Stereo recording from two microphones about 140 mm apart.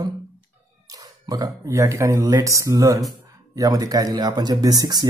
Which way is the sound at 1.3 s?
25° right (ahead or behind).